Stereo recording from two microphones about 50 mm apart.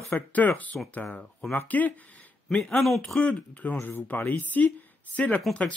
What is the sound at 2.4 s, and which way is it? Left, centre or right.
Speech, left.